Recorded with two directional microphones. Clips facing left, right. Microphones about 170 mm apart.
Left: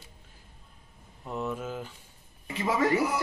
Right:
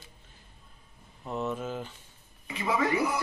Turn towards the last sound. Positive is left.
turn(degrees=40)  # may be behind; listen again after turning